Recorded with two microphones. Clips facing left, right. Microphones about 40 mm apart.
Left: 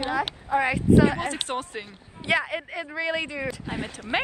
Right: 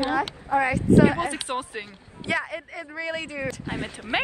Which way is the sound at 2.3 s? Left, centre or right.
Left.